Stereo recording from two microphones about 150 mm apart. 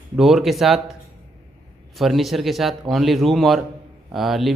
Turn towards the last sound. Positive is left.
turn(degrees=0)  # may be behind; listen again after turning